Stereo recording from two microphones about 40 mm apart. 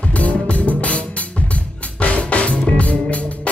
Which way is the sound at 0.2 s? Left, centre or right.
Left.